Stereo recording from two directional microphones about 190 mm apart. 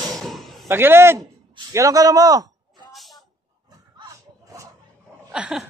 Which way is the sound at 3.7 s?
20° right (ahead or behind).